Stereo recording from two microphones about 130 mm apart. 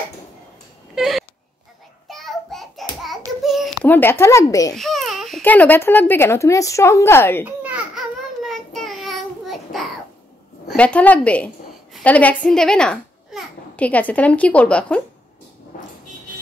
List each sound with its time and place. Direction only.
0.9 s a sound: centre (ahead or behind)
3.4 s babbling: centre (ahead or behind)
3.8 s speech: 15° left (ahead or behind)
4.7 s baby cry: centre (ahead or behind)
5.4 s speech: 15° left (ahead or behind)
7.4 s child singing: 10° right (ahead or behind)
10.8 s a child's voice: 10° left (ahead or behind)